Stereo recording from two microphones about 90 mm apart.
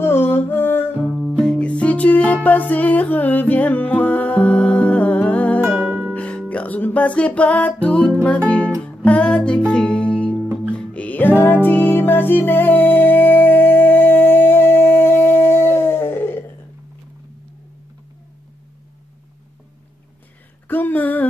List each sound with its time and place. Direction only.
0.0 s humming: 25° left (ahead or behind)
1.4 s music: 10° left (ahead or behind)
6.5 s speech: 15° left (ahead or behind)
8.5 s music: 15° left (ahead or behind)
20.6 s a sound: 20° left (ahead or behind)